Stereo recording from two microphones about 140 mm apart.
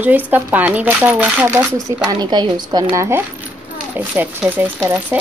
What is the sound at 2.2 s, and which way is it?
Speech, 30° right (ahead or behind).